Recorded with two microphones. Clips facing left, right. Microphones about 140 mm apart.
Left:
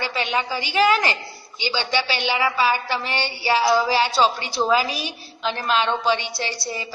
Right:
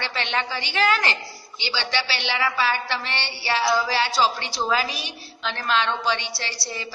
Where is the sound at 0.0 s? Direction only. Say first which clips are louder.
Left 3 dB; 10° left (ahead or behind).